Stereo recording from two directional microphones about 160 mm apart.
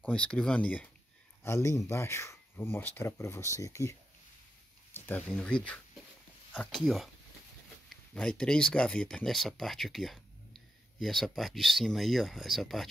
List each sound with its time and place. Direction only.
0.0 s speech: 5° left (ahead or behind)
4.9 s speech: 10° left (ahead or behind)